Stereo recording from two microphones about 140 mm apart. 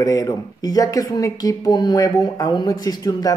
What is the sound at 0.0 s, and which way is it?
Speech, 25° left (ahead or behind).